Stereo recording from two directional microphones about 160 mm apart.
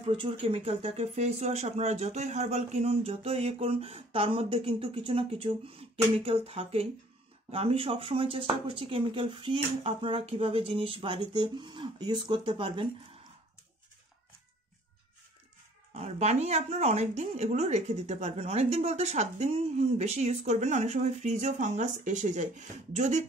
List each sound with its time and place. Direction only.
0.0 s speech: 35° right (ahead or behind)
15.9 s speech: 45° right (ahead or behind)